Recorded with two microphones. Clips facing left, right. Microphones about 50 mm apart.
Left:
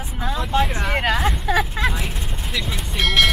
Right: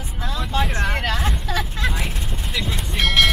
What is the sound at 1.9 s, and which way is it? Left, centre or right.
Vehicle, centre.